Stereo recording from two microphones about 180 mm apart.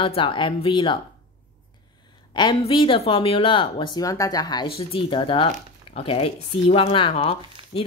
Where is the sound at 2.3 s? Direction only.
25° left (ahead or behind).